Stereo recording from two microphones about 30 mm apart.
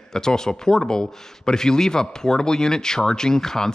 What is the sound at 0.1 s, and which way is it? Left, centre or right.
A man's voice, left.